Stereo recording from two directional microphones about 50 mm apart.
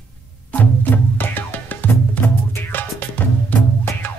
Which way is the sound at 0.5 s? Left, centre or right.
Left.